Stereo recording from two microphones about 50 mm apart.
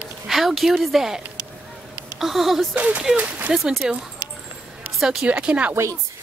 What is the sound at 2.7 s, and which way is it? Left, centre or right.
Speech, right.